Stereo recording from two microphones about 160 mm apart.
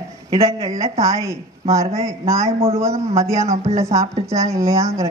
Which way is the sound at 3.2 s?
20° right (ahead or behind).